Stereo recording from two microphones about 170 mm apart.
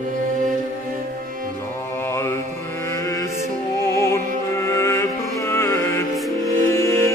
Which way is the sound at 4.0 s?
15° left (ahead or behind).